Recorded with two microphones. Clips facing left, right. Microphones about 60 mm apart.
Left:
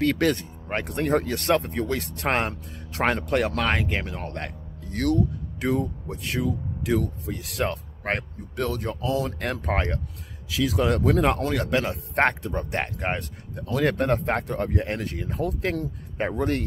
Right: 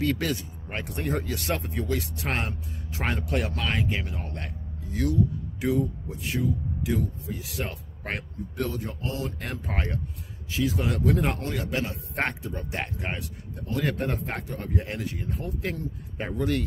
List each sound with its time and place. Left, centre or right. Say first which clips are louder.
0.0 s speech: left 5 dB; left
8.0 s speech: left 4 dB; left
10.5 s speech: left 4 dB; left
13.6 s speech: left 5 dB; left
16.2 s speech: left 3 dB; left